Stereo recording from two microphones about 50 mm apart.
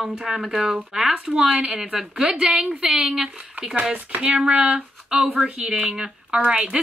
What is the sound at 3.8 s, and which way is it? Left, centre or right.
Speech, right.